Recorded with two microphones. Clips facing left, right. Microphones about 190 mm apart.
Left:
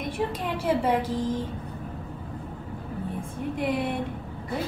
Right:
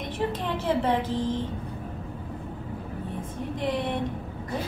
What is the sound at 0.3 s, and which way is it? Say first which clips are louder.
Speech: left 1 dB; 10° left (ahead or behind).